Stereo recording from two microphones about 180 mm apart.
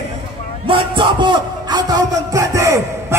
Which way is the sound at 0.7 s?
30° right (ahead or behind).